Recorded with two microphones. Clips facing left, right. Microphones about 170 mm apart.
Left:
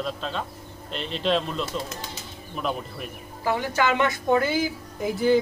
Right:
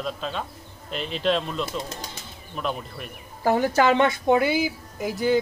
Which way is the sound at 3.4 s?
40° right (ahead or behind).